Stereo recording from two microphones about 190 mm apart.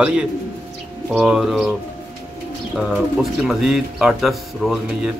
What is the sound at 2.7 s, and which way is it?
Speech, centre (ahead or behind).